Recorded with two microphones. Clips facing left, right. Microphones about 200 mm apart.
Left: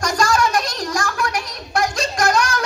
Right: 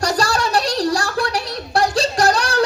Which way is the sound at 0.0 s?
35° right (ahead or behind).